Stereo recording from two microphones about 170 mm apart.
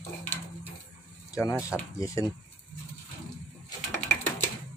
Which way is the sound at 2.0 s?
20° left (ahead or behind).